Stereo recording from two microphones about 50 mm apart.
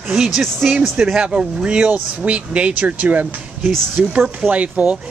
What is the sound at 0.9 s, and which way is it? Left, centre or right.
Speech, centre.